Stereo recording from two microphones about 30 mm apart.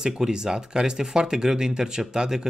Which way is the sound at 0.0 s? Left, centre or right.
Right.